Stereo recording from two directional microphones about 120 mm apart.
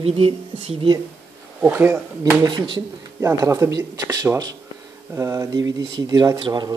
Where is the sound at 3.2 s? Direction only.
30° right (ahead or behind).